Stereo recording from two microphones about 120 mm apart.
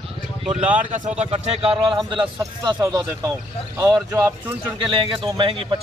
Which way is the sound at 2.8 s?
25° right (ahead or behind).